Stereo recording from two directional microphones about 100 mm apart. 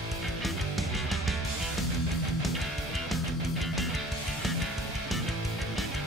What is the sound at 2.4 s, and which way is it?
Music, centre (ahead or behind).